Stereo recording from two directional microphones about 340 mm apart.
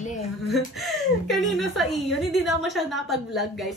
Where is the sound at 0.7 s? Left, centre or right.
Centre.